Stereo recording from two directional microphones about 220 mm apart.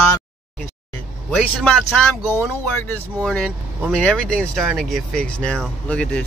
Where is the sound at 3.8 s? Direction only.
5° left (ahead or behind).